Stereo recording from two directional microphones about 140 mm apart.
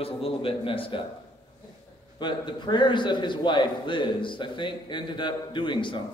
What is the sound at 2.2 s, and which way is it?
A man's voice, 35° left (ahead or behind).